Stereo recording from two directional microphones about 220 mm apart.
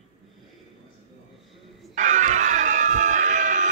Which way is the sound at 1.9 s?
35° right (ahead or behind).